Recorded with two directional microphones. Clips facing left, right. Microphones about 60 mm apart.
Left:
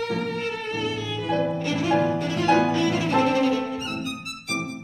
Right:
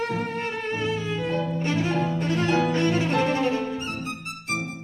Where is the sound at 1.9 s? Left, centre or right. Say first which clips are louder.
Left 4 dB; left.